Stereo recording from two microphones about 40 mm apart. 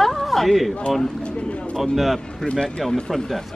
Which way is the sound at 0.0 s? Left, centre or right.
Centre.